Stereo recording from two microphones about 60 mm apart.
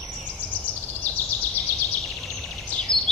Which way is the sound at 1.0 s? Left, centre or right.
Left.